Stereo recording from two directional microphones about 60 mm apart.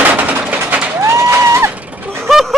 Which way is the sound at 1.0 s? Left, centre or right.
Right.